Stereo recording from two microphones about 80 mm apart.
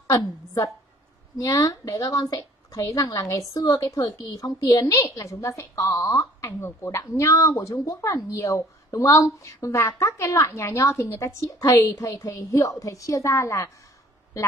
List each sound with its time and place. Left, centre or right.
0.0 s a woman's voice: left